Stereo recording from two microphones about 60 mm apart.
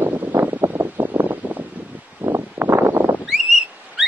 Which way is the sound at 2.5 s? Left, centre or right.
Right.